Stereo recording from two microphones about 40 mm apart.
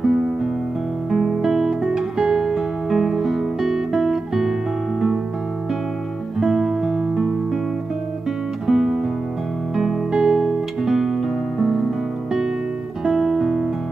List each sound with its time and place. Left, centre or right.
0.0 s music: centre
1.9 s music: centre
6.3 s music: centre
6.8 s music: centre
8.6 s music: centre
10.1 s music: centre
10.8 s music: centre
13.0 s music: centre